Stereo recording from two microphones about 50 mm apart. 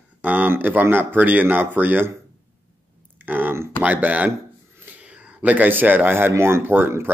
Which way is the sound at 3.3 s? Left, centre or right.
Right.